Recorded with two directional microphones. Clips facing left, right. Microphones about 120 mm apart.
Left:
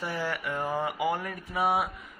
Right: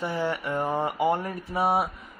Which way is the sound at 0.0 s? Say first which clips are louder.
Right 4 dB; 25° right (ahead or behind).